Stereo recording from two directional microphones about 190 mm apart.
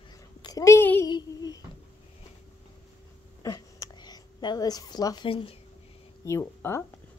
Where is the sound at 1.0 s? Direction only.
20° left (ahead or behind).